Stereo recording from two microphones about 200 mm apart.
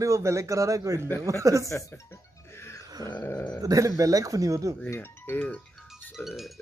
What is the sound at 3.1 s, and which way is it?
Dog, 15° left (ahead or behind).